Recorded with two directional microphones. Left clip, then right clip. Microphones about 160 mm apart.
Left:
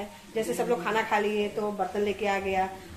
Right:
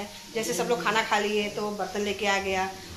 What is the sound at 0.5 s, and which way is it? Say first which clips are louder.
A woman's voice: right 3 dB; 5° left (ahead or behind).